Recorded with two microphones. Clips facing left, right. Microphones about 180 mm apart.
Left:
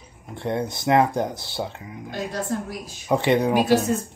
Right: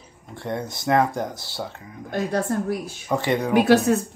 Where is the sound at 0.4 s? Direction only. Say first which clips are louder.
Left 3 dB; 20° left (ahead or behind).